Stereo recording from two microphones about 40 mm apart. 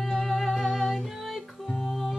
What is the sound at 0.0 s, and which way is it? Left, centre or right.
Music, centre.